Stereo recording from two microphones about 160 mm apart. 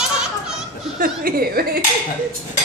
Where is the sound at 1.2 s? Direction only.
65° right (ahead or behind).